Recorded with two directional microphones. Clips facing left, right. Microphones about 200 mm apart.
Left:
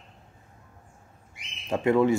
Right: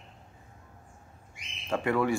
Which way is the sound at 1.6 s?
20° left (ahead or behind).